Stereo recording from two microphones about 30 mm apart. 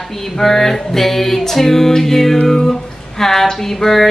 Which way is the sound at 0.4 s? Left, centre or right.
Centre.